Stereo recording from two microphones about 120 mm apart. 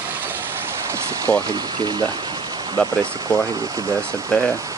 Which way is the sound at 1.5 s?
35° right (ahead or behind).